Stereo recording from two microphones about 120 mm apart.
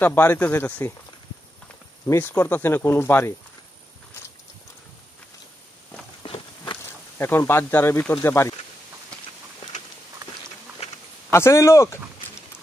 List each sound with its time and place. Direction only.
0.0 s speech: 15° left (ahead or behind)
2.0 s speech: 20° left (ahead or behind)
6.2 s a sound: 45° left (ahead or behind)
6.8 s speech: 20° left (ahead or behind)
11.3 s speech: 25° left (ahead or behind)